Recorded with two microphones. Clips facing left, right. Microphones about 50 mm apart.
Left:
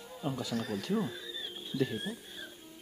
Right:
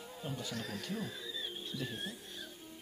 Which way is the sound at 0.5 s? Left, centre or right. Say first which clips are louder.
Left 7 dB; centre.